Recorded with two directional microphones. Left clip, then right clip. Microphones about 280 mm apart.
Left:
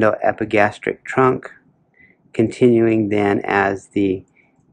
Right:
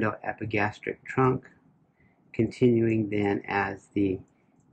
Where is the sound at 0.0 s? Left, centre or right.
Centre.